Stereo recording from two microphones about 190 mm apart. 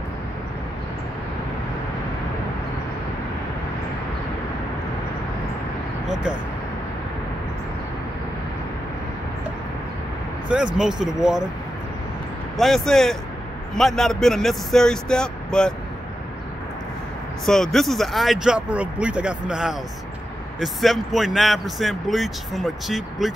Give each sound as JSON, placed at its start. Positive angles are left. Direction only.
{"t": 10.5, "sound": "speech", "side_deg": -5}
{"t": 12.5, "sound": "speech", "side_deg": 0}
{"t": 17.5, "sound": "speech", "side_deg": 0}